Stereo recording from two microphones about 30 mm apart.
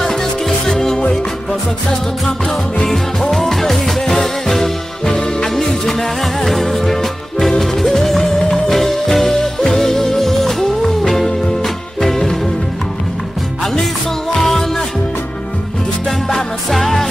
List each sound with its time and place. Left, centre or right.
0.0 s music: centre
2.8 s music: centre
5.0 s music: left
5.5 s music: centre
14.3 s music: centre
16.7 s music: centre